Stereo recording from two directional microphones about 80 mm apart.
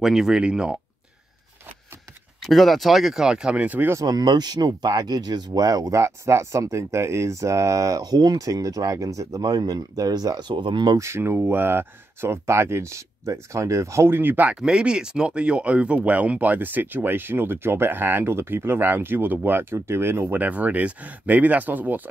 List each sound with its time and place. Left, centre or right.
0.0 s speech: centre
2.4 s speech: centre; by 3.9 s right
3.9 s speech: right
9.4 s speech: right
11.0 s speech: right
14.1 s speech: right
14.5 s speech: centre